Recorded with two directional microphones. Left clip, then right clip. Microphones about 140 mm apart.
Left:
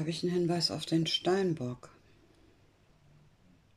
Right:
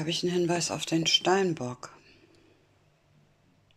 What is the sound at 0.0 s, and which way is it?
Speech, 30° left (ahead or behind).